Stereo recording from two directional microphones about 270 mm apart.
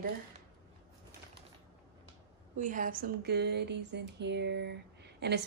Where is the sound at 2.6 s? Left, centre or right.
Right.